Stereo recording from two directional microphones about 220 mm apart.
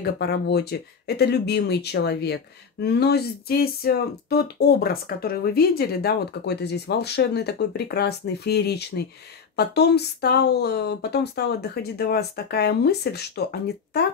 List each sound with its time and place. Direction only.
0.0 s speech: 45° left (ahead or behind)